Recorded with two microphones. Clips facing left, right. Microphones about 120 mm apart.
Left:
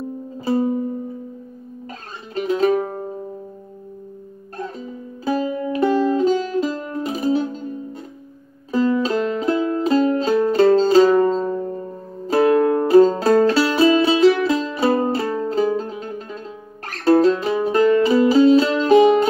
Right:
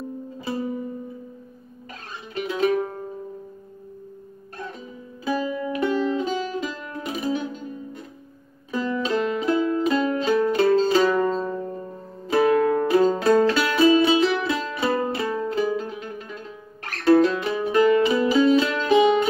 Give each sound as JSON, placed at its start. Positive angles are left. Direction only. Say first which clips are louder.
{"t": 0.5, "sound": "music", "louder": "left 9 dB", "side_deg": 35}
{"t": 2.3, "sound": "music", "louder": "left 4 dB", "side_deg": 35}
{"t": 5.2, "sound": "music", "louder": "left 4 dB", "side_deg": 35}